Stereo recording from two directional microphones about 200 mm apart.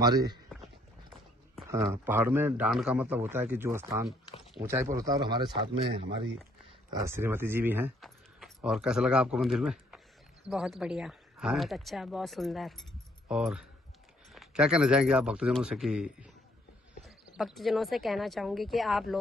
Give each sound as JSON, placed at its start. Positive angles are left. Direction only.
{"t": 0.0, "sound": "speech", "side_deg": -20}
{"t": 1.7, "sound": "a man's voice", "side_deg": -15}
{"t": 6.9, "sound": "speech", "side_deg": -15}
{"t": 17.4, "sound": "speech", "side_deg": 0}